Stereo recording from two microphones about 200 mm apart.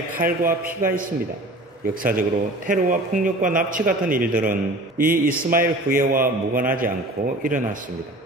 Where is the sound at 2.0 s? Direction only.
45° right (ahead or behind).